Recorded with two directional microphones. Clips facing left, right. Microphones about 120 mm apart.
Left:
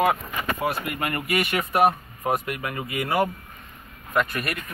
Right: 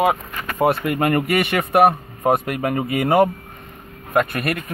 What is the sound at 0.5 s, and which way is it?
Speech, 55° right (ahead or behind).